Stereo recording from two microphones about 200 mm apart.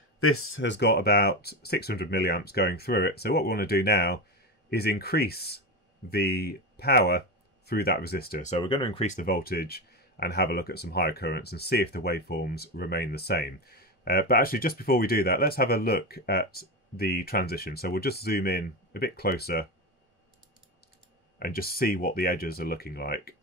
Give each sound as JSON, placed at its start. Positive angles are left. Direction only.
{"t": 0.2, "sound": "speech", "side_deg": 90}
{"t": 8.5, "sound": "speech", "side_deg": 25}
{"t": 9.0, "sound": "speech", "side_deg": 40}
{"t": 21.4, "sound": "speech", "side_deg": 50}